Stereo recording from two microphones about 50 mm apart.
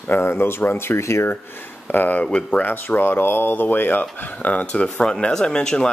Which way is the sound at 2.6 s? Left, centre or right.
Left.